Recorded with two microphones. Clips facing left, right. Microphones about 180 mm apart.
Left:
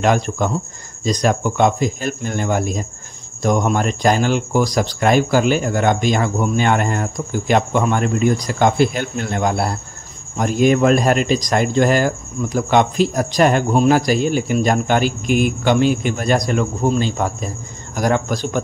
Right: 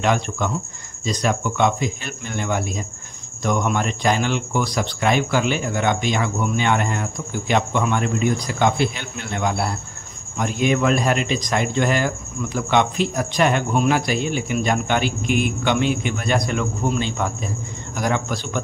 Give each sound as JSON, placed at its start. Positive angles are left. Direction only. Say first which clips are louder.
{"t": 0.0, "sound": "a man's voice", "louder": "left 4 dB", "side_deg": 45}